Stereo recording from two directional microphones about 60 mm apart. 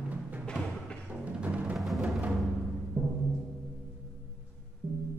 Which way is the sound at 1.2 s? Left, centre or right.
Right.